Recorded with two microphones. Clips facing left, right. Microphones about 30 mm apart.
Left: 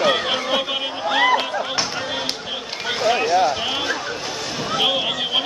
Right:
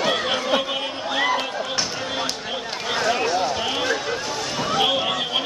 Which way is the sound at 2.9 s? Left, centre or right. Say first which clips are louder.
Left 3 dB; centre.